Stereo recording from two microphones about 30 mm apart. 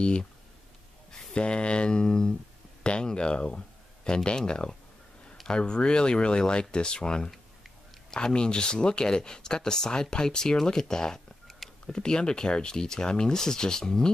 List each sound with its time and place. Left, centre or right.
0.0 s speech: left
1.3 s speech: left
5.5 s speech: left